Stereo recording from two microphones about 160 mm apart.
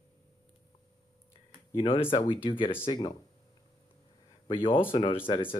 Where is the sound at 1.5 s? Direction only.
35° left (ahead or behind).